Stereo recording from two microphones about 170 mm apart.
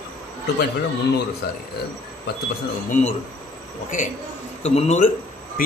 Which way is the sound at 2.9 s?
45° left (ahead or behind).